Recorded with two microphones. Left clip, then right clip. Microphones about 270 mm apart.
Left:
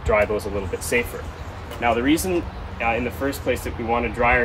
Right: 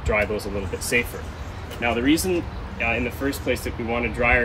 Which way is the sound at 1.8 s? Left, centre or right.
Centre.